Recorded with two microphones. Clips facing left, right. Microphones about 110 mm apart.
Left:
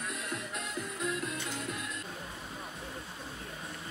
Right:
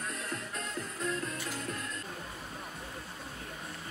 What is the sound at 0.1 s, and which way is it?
Music, 15° left (ahead or behind).